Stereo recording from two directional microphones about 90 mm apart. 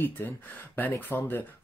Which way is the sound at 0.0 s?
20° left (ahead or behind).